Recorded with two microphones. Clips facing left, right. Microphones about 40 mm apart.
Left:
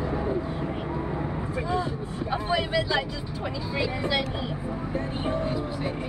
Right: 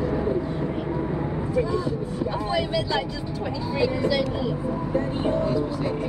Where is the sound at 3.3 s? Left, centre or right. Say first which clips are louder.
Right 3 dB; centre.